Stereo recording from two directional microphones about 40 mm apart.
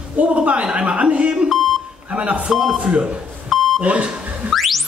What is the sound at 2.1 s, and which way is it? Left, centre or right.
Speech, right.